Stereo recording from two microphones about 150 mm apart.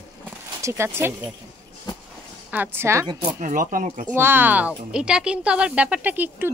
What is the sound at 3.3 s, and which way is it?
Speech, 60° right (ahead or behind).